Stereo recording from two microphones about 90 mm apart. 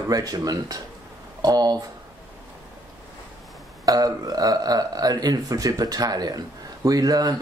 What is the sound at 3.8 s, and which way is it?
Speech, 40° right (ahead or behind).